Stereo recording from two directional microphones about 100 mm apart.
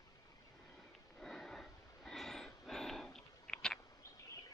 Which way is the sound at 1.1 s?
5° left (ahead or behind).